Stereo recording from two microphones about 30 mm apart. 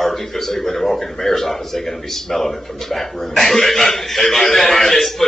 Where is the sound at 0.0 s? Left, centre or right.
Centre.